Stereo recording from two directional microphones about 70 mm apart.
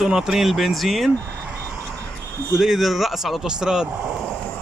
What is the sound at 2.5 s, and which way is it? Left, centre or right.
Speech, centre.